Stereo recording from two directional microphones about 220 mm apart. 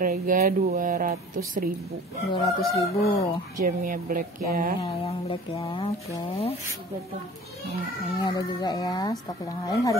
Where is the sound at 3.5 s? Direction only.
35° right (ahead or behind).